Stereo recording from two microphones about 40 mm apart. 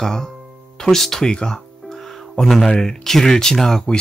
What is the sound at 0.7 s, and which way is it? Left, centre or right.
Music, centre.